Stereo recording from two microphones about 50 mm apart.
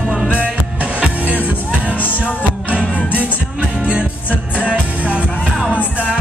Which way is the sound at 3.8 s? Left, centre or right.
Right.